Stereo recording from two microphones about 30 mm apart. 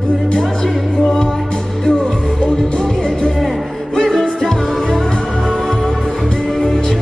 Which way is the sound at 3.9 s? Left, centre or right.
Centre.